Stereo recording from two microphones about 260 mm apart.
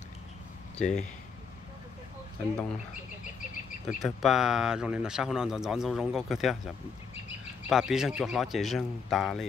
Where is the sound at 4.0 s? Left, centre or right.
Centre.